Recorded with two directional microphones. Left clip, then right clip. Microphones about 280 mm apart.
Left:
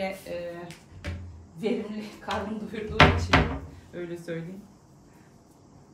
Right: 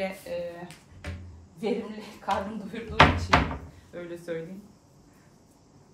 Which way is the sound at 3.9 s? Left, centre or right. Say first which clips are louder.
Even; centre.